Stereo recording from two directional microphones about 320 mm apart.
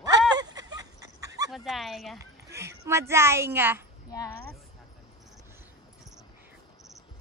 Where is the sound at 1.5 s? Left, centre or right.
Centre.